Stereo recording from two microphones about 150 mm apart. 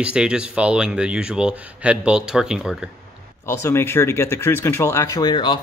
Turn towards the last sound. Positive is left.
turn(degrees=30)  # may be behind; listen again after turning